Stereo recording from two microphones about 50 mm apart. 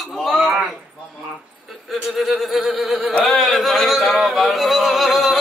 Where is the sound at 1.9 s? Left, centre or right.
Centre.